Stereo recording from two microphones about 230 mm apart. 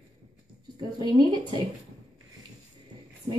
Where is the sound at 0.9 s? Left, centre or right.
Centre.